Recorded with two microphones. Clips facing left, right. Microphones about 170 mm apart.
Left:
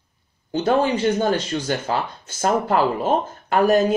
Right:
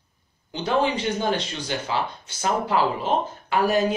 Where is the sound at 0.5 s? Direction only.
45° left (ahead or behind).